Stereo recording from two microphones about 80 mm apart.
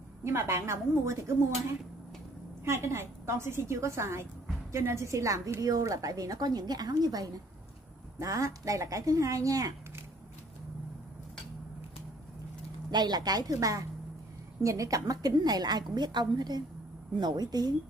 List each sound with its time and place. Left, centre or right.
0.2 s a woman's voice: right
8.2 s a woman's voice: right
12.9 s a woman's voice: right